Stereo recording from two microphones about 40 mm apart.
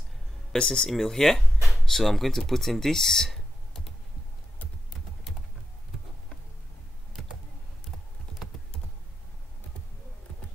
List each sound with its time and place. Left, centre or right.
0.5 s speech: centre
1.6 s a sound: centre
1.9 s speech: centre